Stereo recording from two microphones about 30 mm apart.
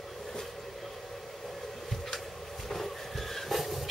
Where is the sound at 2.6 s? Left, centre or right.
Centre.